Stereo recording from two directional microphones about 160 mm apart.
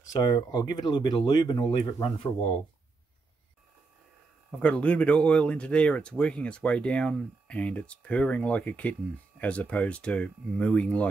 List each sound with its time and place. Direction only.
0.1 s speech: 25° left (ahead or behind)
4.5 s speech: 10° left (ahead or behind)